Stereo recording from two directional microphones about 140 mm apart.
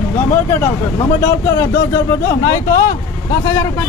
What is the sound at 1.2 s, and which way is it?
Speech, 20° left (ahead or behind).